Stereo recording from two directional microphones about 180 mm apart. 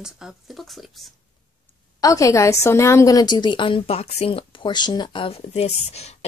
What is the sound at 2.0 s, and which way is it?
A woman's voice, 20° left (ahead or behind).